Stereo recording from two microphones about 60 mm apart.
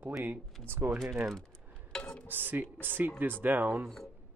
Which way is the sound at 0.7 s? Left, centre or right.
Right.